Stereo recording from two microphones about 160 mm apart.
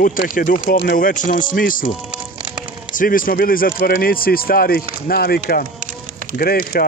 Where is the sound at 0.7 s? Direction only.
80° left; by 1.8 s 60° left (ahead or behind).